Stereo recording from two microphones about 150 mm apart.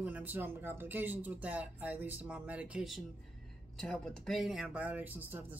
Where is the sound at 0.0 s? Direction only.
10° right (ahead or behind).